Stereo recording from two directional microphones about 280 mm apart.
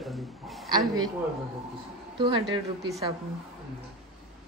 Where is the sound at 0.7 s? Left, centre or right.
Centre.